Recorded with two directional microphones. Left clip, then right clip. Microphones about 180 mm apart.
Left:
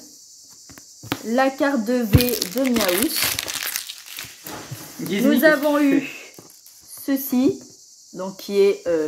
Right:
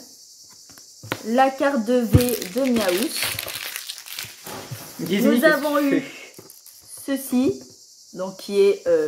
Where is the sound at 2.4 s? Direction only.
50° left (ahead or behind).